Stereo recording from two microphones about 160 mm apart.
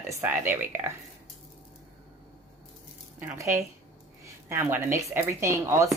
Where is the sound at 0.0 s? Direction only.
15° right (ahead or behind).